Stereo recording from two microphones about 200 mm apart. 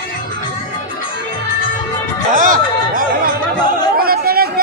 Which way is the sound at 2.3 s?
40° right (ahead or behind).